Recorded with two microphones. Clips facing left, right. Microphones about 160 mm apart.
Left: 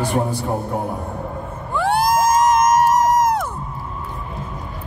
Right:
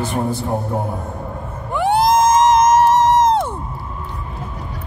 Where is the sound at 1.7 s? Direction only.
20° right (ahead or behind).